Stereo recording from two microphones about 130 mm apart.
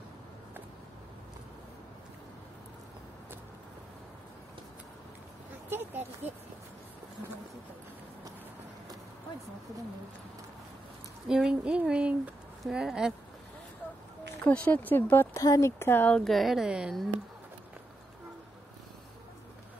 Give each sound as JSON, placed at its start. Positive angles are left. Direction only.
{"t": 11.2, "sound": "speech", "side_deg": -5}
{"t": 14.4, "sound": "speech", "side_deg": 10}
{"t": 16.2, "sound": "speech", "side_deg": 0}